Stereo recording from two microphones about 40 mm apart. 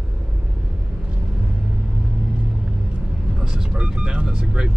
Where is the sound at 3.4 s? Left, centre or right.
Centre.